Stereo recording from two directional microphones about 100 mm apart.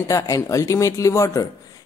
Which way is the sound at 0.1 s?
35° left (ahead or behind).